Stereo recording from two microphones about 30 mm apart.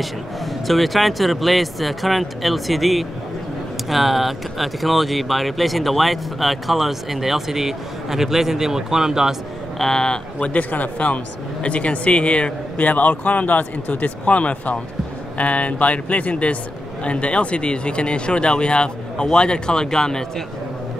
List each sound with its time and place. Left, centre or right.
0.7 s speech: centre
9.8 s speech: centre
10.6 s speech: left
11.6 s speech: left